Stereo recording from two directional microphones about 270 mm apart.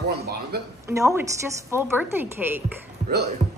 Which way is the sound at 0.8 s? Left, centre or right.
Centre.